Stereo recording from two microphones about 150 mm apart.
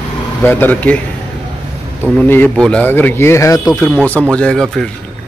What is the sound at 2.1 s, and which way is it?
Speech, 10° left (ahead or behind).